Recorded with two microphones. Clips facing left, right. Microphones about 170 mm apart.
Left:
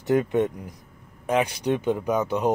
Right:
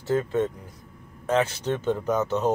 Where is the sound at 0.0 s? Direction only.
15° left (ahead or behind).